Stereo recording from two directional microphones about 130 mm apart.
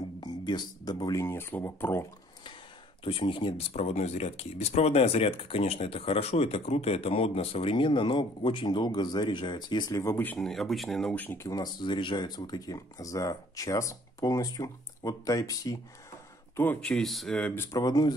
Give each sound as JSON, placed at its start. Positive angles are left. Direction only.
{"t": 0.2, "sound": "speech", "side_deg": 35}
{"t": 1.2, "sound": "speech", "side_deg": 20}
{"t": 3.0, "sound": "speech", "side_deg": 40}
{"t": 3.7, "sound": "speech", "side_deg": 55}
{"t": 11.2, "sound": "speech", "side_deg": 25}
{"t": 16.8, "sound": "speech", "side_deg": 0}
{"t": 17.6, "sound": "speech", "side_deg": 30}